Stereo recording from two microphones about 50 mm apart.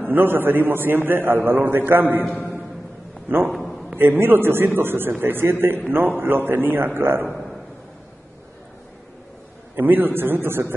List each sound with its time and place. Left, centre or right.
0.0 s a man's voice: right
2.2 s a man's voice: left
3.3 s a man's voice: right
7.2 s a sound: centre
9.8 s a man's voice: right